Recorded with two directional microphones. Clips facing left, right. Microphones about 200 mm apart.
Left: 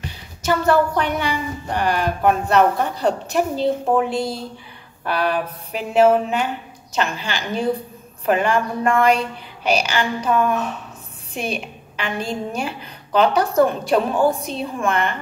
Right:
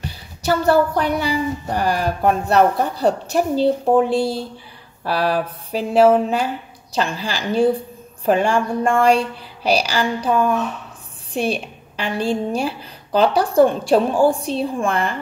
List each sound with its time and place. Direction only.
0.4 s a woman's voice: 35° right (ahead or behind)